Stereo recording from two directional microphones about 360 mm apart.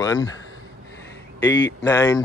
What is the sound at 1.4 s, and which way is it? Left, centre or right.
Speech, left.